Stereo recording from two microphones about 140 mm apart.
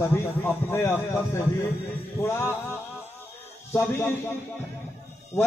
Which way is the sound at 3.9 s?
20° left (ahead or behind).